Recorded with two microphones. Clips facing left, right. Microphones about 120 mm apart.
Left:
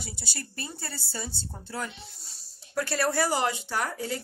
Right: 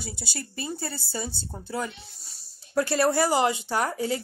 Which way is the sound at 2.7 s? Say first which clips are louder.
Right 4 dB; 20° right (ahead or behind).